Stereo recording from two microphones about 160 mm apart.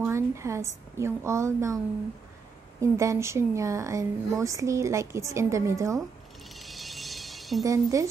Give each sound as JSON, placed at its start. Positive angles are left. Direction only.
{"t": 0.0, "sound": "a woman's voice", "side_deg": -15}
{"t": 2.8, "sound": "speech", "side_deg": -20}
{"t": 6.5, "sound": "music", "side_deg": 0}
{"t": 7.6, "sound": "speech", "side_deg": -20}